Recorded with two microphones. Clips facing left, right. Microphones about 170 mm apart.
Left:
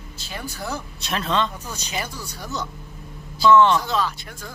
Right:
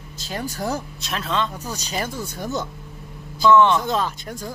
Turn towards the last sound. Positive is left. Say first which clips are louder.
# even
turn(degrees=-40)  # may be behind; listen again after turning